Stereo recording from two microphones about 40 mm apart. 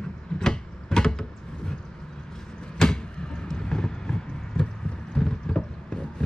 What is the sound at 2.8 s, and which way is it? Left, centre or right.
Vehicle, centre.